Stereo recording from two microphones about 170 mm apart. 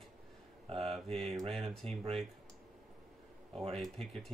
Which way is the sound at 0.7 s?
35° right (ahead or behind).